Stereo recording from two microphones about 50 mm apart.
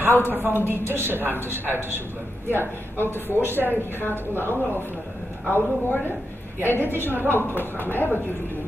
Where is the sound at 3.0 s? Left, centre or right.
Left.